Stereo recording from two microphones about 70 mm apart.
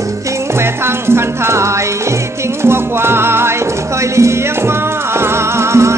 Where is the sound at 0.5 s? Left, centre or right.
Right.